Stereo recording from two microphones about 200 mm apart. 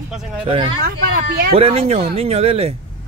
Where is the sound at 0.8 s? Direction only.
45° right (ahead or behind).